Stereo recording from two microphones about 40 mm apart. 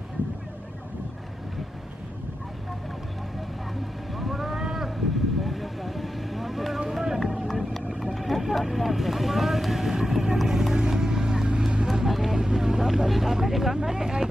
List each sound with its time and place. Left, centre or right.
4.1 s cattle: centre
5.4 s vehicle: centre
6.9 s run: centre
7.4 s vehicle: centre
11.9 s vehicle: centre
13.7 s speech: centre